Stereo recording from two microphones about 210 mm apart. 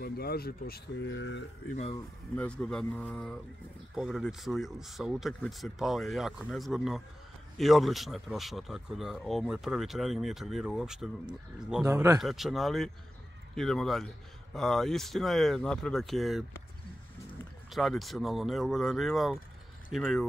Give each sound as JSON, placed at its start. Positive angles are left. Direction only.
{"t": 0.0, "sound": "speech", "side_deg": 45}
{"t": 2.3, "sound": "speech", "side_deg": 5}
{"t": 11.8, "sound": "speech", "side_deg": -15}
{"t": 12.2, "sound": "speech", "side_deg": 0}
{"t": 17.6, "sound": "speech", "side_deg": 0}